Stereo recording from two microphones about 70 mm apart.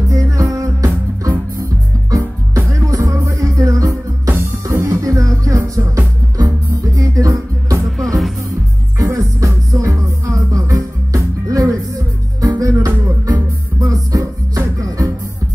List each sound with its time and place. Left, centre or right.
0.1 s music: right
8.0 s music: centre
8.9 s music: right